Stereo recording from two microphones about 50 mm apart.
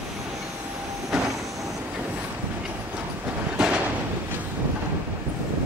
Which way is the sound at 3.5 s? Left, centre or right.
Right.